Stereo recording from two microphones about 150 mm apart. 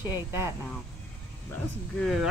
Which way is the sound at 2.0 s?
Centre (ahead or behind).